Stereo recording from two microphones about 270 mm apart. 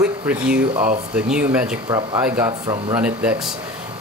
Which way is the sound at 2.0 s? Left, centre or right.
Centre.